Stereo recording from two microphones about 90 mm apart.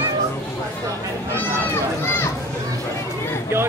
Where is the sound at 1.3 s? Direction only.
30° left (ahead or behind).